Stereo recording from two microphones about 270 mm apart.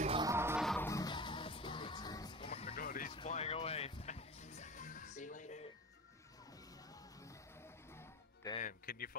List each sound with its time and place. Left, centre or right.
0.0 s music: centre; by 2.7 s left
2.7 s music: left
8.5 s music: left